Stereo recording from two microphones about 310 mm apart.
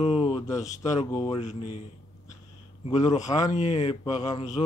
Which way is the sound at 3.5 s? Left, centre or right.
Left.